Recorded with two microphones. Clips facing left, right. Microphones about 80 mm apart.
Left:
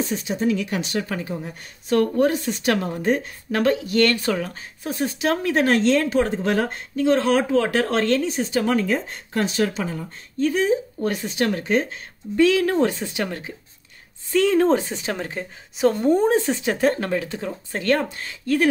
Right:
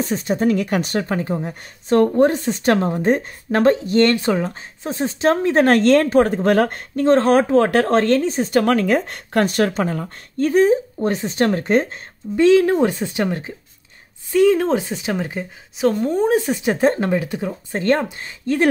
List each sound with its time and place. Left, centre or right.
0.0 s speech: right
5.6 s a woman's voice: right
11.0 s speech: right
12.4 s speech: right
14.6 s speech: centre
15.8 s speech: centre
16.6 s speech: right